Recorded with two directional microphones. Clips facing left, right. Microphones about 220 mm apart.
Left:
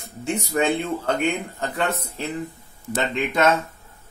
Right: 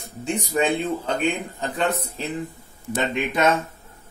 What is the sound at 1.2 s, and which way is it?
Speech, 15° right (ahead or behind).